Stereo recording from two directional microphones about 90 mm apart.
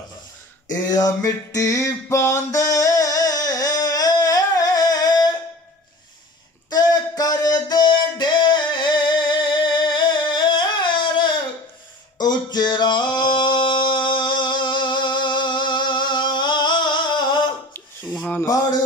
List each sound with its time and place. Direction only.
0.8 s a sound: 45° left (ahead or behind)
6.7 s music: 45° left (ahead or behind)
12.2 s singing: 50° left (ahead or behind)